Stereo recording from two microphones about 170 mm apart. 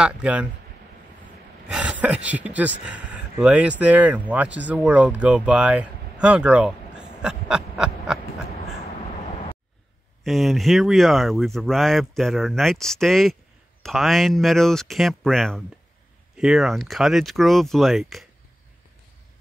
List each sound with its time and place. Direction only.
0.0 s speech: 5° right (ahead or behind)
1.7 s speech: 5° right (ahead or behind)
10.2 s speech: centre (ahead or behind)